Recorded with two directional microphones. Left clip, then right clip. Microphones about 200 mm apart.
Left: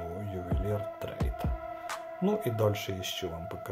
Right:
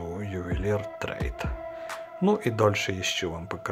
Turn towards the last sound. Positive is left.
turn(degrees=-20)  # may be behind; listen again after turning